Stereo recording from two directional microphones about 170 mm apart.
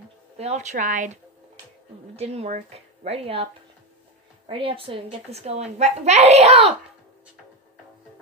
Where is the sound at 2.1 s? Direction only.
35° right (ahead or behind).